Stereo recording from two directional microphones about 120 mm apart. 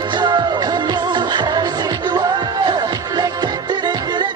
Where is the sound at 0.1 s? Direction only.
40° right (ahead or behind).